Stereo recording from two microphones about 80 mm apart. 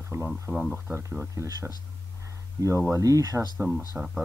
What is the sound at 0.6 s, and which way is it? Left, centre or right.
Speech, centre.